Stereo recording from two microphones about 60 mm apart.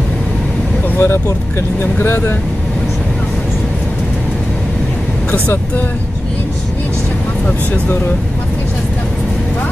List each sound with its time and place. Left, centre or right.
0.9 s speech: left